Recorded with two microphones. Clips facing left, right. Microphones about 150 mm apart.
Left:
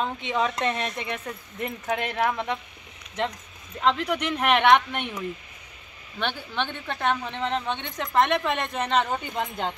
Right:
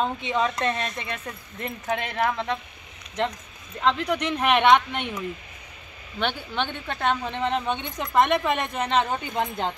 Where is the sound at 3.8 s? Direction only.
5° left (ahead or behind).